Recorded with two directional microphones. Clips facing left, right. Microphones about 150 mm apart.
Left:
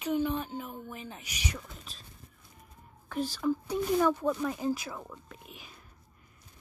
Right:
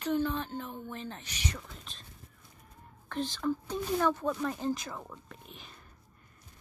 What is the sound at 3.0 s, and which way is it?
Speech, 10° left (ahead or behind).